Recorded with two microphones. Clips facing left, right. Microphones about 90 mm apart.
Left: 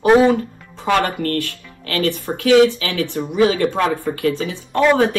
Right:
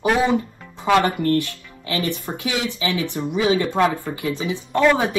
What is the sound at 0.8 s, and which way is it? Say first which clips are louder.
Speech: right 1 dB; 15° right (ahead or behind).